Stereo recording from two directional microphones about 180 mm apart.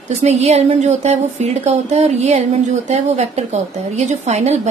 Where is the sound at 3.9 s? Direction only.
40° right (ahead or behind).